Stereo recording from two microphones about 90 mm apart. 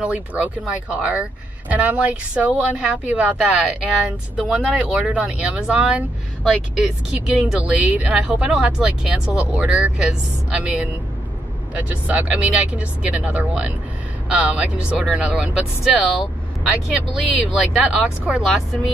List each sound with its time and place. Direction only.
0.0 s speech: 15° right (ahead or behind)